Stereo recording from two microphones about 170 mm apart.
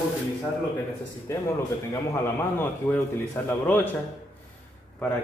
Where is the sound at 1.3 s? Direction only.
15° left (ahead or behind).